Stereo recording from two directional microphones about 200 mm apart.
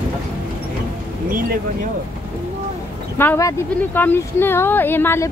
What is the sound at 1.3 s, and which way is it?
Speech, 45° right (ahead or behind).